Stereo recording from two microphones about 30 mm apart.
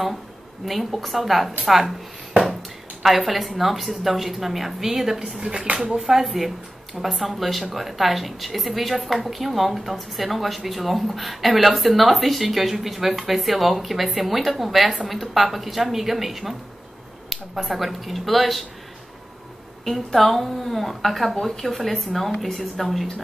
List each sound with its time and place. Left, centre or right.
0.7 s a woman's voice: centre
3.0 s a woman's voice: centre
5.5 s speech: right
5.9 s a woman's voice: centre
19.8 s a woman's voice: centre